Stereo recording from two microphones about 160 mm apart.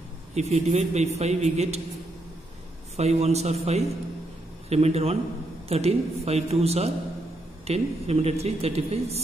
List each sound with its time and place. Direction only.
0.3 s a man's voice: 45° right (ahead or behind)
3.0 s speech: 40° right (ahead or behind)